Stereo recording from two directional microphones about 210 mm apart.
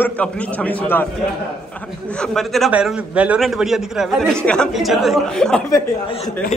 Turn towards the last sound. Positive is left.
turn(degrees=20)  # may be behind; listen again after turning